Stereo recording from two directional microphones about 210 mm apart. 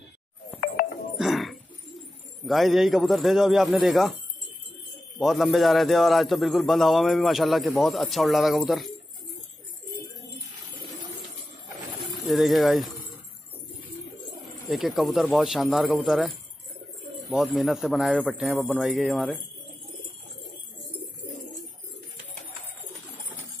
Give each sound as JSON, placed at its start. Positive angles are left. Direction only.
{"t": 0.8, "sound": "music", "side_deg": 45}
{"t": 1.1, "sound": "a sound", "side_deg": 0}
{"t": 2.0, "sound": "speech", "side_deg": 0}
{"t": 5.2, "sound": "a man's voice", "side_deg": 0}
{"t": 12.3, "sound": "a man's voice", "side_deg": 0}
{"t": 14.7, "sound": "a man's voice", "side_deg": 0}